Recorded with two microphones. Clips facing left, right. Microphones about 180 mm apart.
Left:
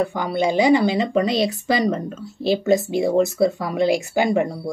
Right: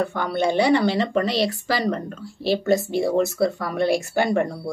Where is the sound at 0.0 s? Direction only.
15° left (ahead or behind).